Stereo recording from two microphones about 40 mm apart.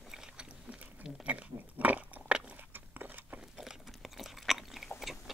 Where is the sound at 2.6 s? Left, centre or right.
Right.